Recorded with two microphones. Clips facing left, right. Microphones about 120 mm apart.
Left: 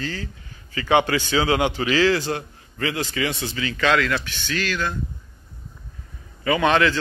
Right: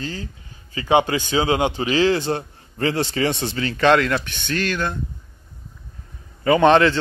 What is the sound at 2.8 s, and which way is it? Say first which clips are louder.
A man's voice: right 4 dB; 35° right (ahead or behind).